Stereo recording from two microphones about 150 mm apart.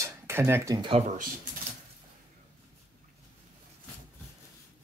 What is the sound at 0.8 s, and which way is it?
Speech, 40° right (ahead or behind).